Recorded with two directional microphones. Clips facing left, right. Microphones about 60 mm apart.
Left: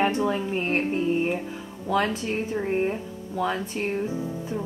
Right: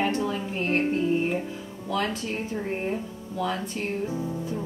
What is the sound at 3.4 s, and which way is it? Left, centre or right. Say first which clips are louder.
Speech: left 2 dB; left.